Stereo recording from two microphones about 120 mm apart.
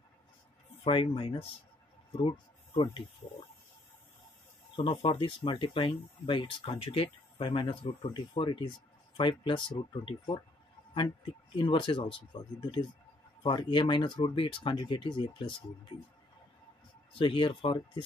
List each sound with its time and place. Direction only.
0.8 s speech: 45° left (ahead or behind)
4.7 s speech: 50° left (ahead or behind)
11.5 s speech: 45° left (ahead or behind)
17.1 s speech: 50° left (ahead or behind)